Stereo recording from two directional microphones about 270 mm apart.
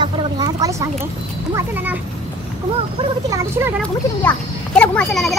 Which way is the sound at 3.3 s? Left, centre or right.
Centre.